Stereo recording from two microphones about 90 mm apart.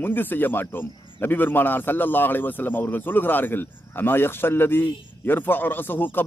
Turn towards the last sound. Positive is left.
turn(degrees=25)  # may be behind; listen again after turning